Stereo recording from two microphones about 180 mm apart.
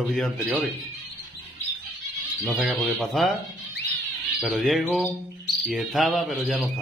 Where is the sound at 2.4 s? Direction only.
5° right (ahead or behind).